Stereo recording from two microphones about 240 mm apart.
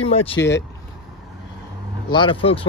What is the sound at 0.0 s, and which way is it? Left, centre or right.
Speech, left.